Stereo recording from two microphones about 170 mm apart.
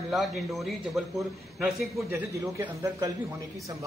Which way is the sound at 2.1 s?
15° right (ahead or behind).